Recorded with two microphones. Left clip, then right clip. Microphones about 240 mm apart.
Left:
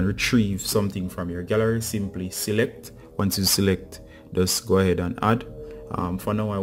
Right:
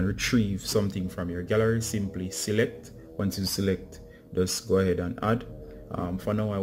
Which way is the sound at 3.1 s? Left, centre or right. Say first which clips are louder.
Left 7 dB; centre.